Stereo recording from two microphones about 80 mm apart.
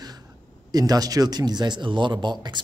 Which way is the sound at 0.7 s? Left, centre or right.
Right.